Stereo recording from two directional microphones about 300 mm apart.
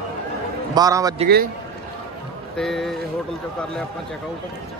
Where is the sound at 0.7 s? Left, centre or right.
Centre.